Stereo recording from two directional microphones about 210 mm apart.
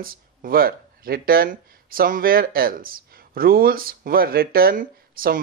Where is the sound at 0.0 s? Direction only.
45° right (ahead or behind).